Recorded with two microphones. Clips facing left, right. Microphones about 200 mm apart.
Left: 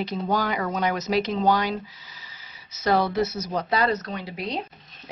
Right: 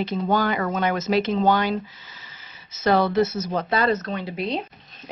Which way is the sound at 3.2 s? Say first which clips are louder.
Right 4 dB; 25° right (ahead or behind).